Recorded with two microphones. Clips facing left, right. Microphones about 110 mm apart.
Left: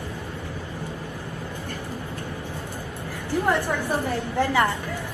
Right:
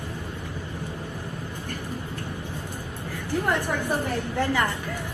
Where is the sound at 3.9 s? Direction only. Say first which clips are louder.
Left 1 dB; 15° left (ahead or behind).